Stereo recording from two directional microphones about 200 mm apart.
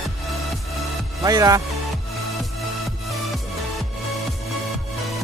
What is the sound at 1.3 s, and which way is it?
Speech, 20° right (ahead or behind).